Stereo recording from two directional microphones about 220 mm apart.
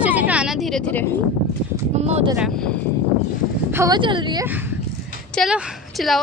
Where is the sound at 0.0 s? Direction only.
5° right (ahead or behind).